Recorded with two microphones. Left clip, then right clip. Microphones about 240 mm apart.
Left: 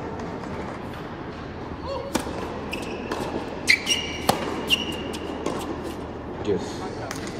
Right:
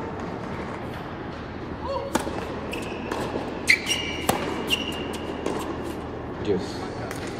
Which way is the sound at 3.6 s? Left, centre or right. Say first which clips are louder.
Left 1 dB; centre.